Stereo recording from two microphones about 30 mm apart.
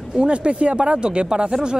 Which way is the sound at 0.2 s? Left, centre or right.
Right.